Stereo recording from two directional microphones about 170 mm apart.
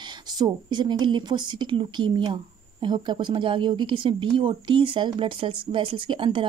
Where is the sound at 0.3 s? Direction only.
25° right (ahead or behind).